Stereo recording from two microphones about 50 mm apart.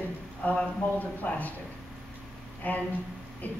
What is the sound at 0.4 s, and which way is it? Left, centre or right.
Speech, left.